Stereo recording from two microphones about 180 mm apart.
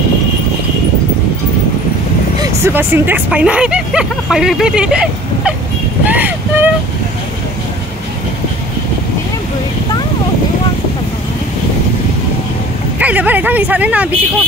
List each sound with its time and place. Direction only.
2.4 s speech: 15° right (ahead or behind)
6.0 s vehicle: 10° right (ahead or behind)
13.0 s speech: 10° right (ahead or behind)